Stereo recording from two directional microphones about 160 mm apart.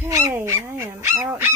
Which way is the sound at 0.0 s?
15° right (ahead or behind).